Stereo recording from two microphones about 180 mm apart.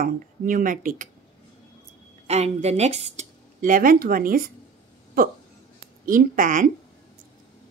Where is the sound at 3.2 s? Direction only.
50° right (ahead or behind).